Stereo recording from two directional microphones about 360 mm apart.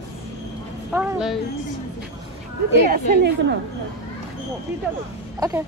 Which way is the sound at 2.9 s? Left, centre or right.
Right.